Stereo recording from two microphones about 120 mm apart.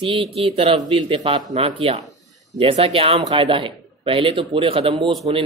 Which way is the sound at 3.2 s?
40° right (ahead or behind).